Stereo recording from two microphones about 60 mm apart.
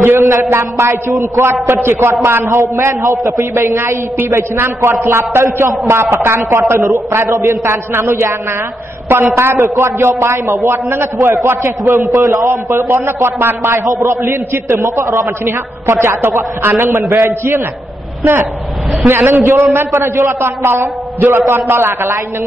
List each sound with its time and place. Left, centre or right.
0.0 s a man's voice: right
9.4 s a man's voice: right
19.0 s a man's voice: right